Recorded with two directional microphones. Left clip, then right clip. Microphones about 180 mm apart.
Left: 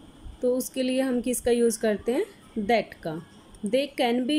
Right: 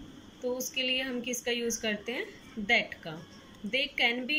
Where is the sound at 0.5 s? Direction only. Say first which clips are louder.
Left 4 dB; 40° left (ahead or behind).